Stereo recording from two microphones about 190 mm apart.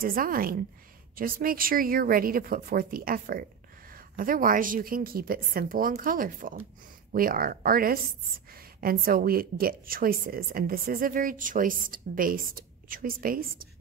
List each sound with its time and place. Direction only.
0.0 s a woman's voice: 50° right (ahead or behind)